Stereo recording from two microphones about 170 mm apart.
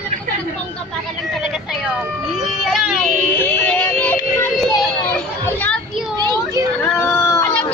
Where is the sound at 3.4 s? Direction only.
10° left (ahead or behind).